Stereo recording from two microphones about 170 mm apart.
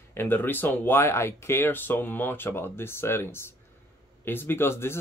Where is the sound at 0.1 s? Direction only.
15° left (ahead or behind).